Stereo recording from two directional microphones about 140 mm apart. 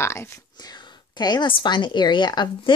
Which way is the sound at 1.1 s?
30° left (ahead or behind).